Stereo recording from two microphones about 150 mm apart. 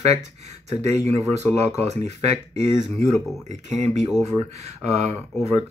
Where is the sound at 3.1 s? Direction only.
Centre (ahead or behind).